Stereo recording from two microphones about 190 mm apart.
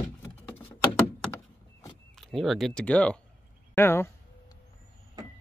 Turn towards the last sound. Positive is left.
turn(degrees=10)  # may be behind; listen again after turning